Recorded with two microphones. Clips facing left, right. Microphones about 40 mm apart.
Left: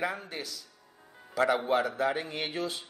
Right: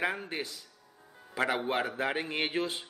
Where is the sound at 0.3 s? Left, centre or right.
Right.